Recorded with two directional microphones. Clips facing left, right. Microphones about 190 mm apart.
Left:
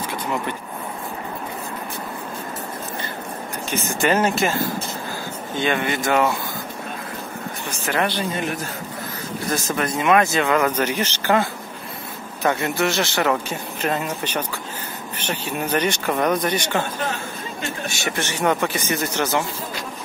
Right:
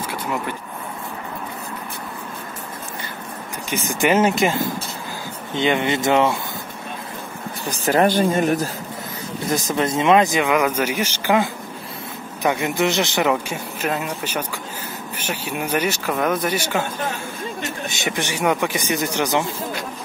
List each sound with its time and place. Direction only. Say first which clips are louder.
0.1 s vehicle: even; 5° right (ahead or behind)
3.7 s a man's voice: right 2 dB; 15° right (ahead or behind)
7.6 s a man's voice: right 6 dB; 35° right (ahead or behind)
9.5 s a man's voice: right 3 dB; 20° right (ahead or behind)
12.4 s a man's voice: right 1 dB; 15° right (ahead or behind)
17.8 s a man's voice: right 2 dB; 20° right (ahead or behind)